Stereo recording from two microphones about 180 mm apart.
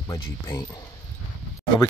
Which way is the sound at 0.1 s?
20° left (ahead or behind).